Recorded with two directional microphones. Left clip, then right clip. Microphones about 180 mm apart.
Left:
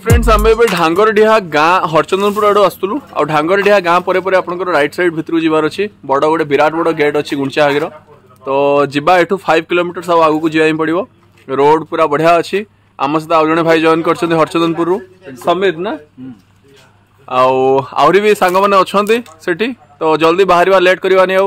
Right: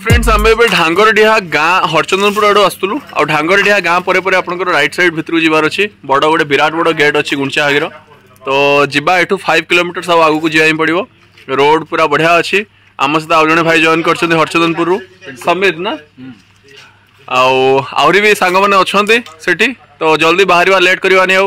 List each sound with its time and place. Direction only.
0.0 s speech: centre (ahead or behind)
17.3 s speech: 10° right (ahead or behind)